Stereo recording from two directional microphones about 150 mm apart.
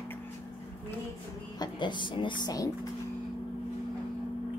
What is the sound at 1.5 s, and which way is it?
Speech, 30° left (ahead or behind).